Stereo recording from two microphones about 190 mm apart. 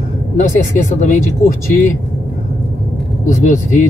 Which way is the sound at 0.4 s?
40° left (ahead or behind).